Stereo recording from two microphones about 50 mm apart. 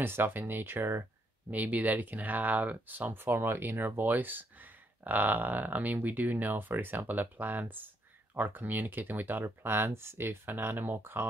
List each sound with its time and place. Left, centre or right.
0.0 s speech: right
1.5 s speech: right